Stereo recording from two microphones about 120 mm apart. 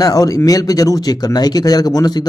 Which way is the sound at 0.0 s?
30° left (ahead or behind).